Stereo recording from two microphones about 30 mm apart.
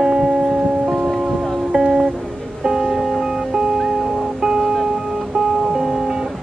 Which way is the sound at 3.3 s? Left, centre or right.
Centre.